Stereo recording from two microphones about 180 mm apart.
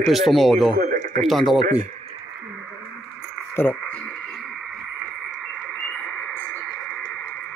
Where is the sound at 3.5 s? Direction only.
10° left (ahead or behind).